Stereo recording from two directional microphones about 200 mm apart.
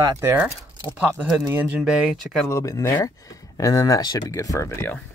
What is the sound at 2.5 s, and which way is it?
Speech, 15° left (ahead or behind).